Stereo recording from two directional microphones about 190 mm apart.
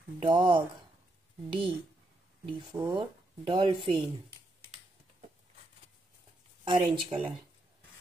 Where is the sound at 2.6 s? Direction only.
20° right (ahead or behind).